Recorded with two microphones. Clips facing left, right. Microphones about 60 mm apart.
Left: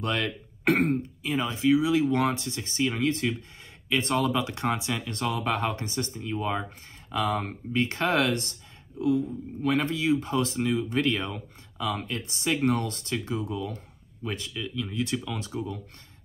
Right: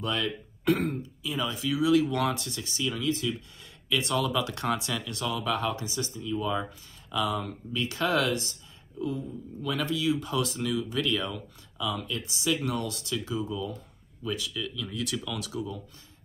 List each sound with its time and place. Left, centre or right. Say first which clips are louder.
0.0 s speech: left 1 dB; left
4.4 s speech: left 1 dB; left
5.1 s speech: left 2 dB; left
9.8 s speech: even; left
14.2 s speech: right 1 dB; left
14.5 s speech: left 2 dB; left